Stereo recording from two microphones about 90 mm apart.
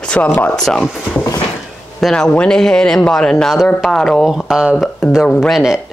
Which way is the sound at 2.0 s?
5° left (ahead or behind).